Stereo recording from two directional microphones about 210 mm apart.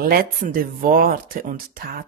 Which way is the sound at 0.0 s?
45° right (ahead or behind).